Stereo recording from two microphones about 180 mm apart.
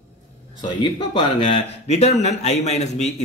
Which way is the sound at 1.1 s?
30° left (ahead or behind).